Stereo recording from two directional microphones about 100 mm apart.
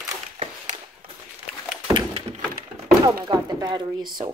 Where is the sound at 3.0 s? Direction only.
40° right (ahead or behind).